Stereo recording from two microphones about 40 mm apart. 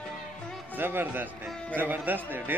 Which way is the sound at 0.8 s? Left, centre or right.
Right.